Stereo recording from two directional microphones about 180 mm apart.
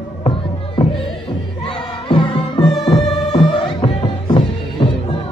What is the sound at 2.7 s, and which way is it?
Music, centre (ahead or behind).